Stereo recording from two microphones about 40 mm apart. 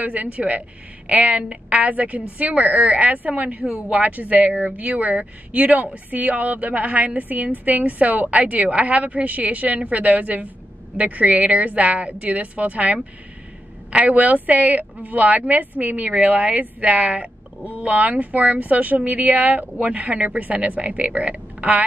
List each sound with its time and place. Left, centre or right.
0.0 s speech: right
14.0 s speech: right